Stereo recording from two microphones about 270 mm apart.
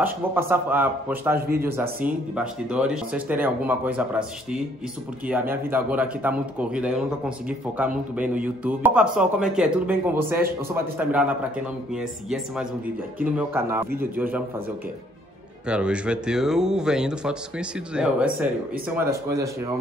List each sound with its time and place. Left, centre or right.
0.0 s a man's voice: centre
15.6 s a man's voice: centre